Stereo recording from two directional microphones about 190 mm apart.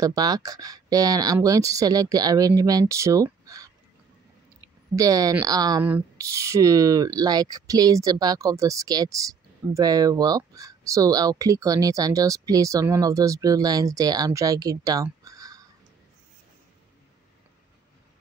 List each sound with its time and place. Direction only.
0.0 s speech: 20° right (ahead or behind)
4.9 s speech: 20° right (ahead or behind)